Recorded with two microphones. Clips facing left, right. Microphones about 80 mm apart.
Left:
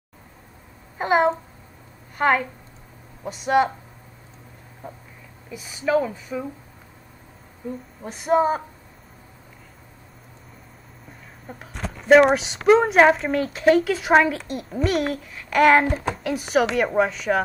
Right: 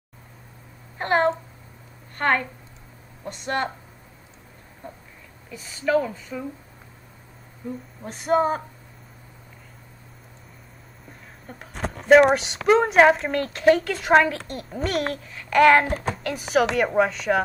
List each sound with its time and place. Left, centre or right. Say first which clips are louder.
0.9 s a woman's voice: left 2 dB; centre
4.8 s a sound: left 2 dB; centre
5.5 s speech: left 1 dB; centre
8.0 s a woman's voice: left 2 dB; centre
11.5 s speech: even; centre
11.8 s a sound: right 3 dB; right
12.1 s a woman's voice: even; centre